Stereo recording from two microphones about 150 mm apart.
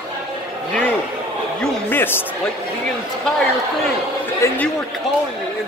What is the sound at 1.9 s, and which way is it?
Speech, 15° left (ahead or behind).